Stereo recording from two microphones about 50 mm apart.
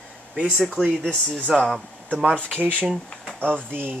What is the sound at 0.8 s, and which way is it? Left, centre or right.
Speech, centre.